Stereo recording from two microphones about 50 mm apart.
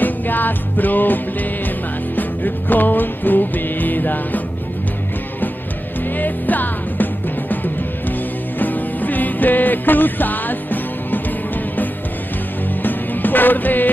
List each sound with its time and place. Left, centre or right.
0.0 s music: left
6.1 s music: left